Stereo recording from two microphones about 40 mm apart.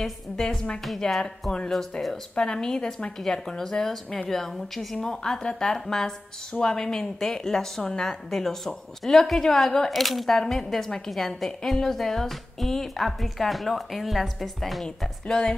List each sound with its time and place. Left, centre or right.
0.0 s a woman's voice: centre
2.3 s a woman's voice: centre
4.9 s a woman's voice: centre
15.2 s a woman's voice: centre